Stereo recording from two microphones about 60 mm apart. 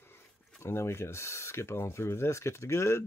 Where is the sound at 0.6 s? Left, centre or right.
Left.